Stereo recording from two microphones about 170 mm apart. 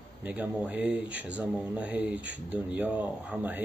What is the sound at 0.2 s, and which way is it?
Speech, 10° right (ahead or behind).